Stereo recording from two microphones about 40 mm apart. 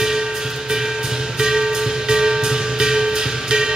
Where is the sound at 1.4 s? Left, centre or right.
Centre.